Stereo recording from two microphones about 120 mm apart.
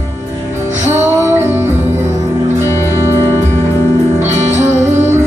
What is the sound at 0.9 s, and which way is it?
Music, 20° right (ahead or behind).